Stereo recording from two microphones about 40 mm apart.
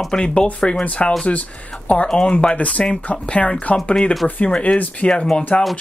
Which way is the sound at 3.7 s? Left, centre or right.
Left.